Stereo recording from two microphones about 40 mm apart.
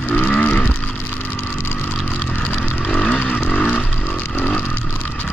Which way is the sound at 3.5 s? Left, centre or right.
Left.